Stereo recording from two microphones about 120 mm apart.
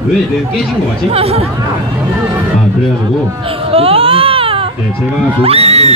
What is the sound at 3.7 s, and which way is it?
Baby cry, 50° right (ahead or behind).